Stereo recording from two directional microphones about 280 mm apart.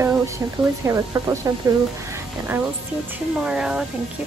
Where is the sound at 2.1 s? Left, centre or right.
Centre.